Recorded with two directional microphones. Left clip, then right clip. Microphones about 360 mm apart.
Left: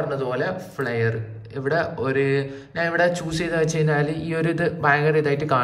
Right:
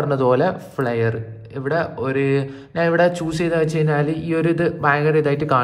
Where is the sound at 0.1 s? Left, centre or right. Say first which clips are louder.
Right 7 dB; centre.